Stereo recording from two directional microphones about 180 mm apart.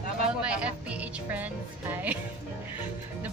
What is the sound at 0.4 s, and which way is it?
Music, 5° right (ahead or behind).